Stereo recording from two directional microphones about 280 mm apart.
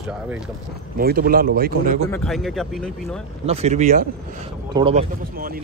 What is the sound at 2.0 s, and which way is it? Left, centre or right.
Speech, centre.